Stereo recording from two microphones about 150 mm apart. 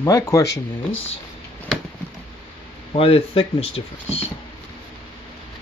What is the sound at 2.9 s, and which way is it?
Speech, 40° left (ahead or behind).